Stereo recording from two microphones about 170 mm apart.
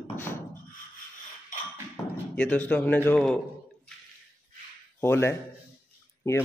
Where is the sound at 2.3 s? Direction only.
10° left (ahead or behind).